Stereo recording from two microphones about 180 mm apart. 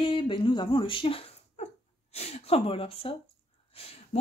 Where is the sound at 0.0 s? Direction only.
30° left (ahead or behind).